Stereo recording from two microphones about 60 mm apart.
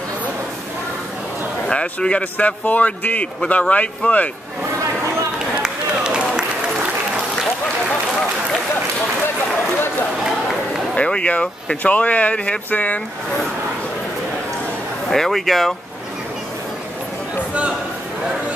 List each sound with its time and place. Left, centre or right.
1.7 s speech: centre
5.6 s run: centre
10.2 s run: centre
11.0 s speech: centre
15.0 s speech: centre